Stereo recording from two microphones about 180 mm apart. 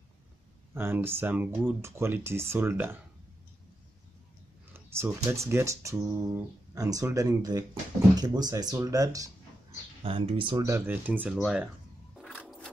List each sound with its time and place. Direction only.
0.7 s speech: 10° right (ahead or behind)
4.7 s speech: 15° right (ahead or behind)
10.0 s speech: 30° right (ahead or behind)
10.7 s speech: 10° right (ahead or behind)